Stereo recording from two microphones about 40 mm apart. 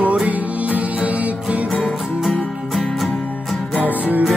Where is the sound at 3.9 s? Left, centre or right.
Right.